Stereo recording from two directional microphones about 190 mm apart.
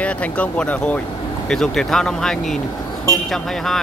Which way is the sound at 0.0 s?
5° left (ahead or behind).